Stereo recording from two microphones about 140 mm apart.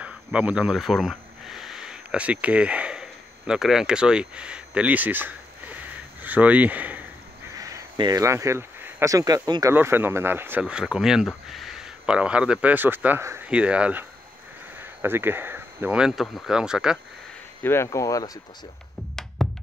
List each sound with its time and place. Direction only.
0.0 s speech: 10° right (ahead or behind)
6.2 s a sound: 10° right (ahead or behind)
7.5 s speech: 25° right (ahead or behind)
9.8 s speech: 15° right (ahead or behind)
17.8 s speech: 25° left (ahead or behind)
19.4 s music: 5° left (ahead or behind)